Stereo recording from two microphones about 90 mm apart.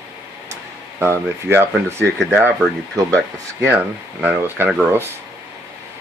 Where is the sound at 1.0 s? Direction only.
25° right (ahead or behind).